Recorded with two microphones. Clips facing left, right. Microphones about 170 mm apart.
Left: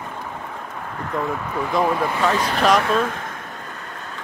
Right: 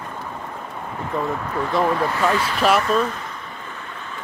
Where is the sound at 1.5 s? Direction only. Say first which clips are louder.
Even; 5° left (ahead or behind).